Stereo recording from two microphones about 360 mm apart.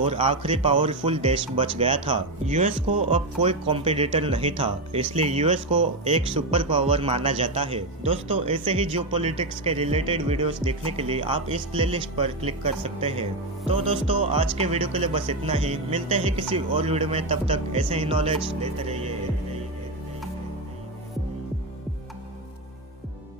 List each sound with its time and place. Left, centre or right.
0.0 s speech: centre